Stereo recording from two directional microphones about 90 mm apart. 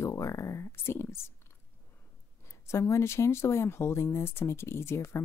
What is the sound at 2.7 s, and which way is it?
Speech, 30° left (ahead or behind).